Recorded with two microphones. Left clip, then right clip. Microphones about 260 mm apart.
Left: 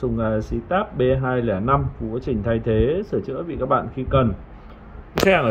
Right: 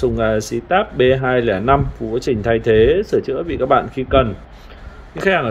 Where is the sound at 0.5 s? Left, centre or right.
Centre.